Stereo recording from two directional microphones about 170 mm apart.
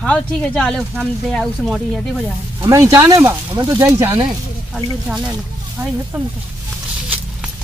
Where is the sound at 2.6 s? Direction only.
20° right (ahead or behind).